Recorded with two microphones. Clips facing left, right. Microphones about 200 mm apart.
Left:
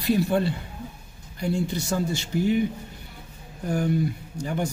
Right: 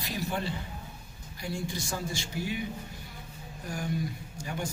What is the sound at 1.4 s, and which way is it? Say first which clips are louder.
Speech: left 9 dB; 65° left (ahead or behind).